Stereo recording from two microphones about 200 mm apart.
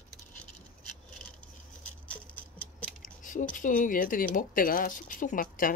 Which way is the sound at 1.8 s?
5° left (ahead or behind).